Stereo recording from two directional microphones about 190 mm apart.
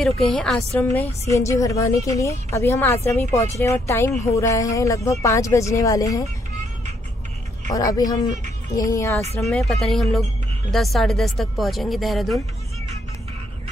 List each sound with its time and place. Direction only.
0.0 s a woman's voice: 5° left (ahead or behind)
7.7 s a woman's voice: 20° left (ahead or behind)
9.4 s speech: centre (ahead or behind)